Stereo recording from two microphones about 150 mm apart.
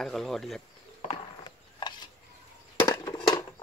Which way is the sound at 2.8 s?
25° left (ahead or behind).